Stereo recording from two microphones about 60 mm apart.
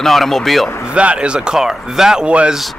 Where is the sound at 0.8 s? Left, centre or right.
Centre.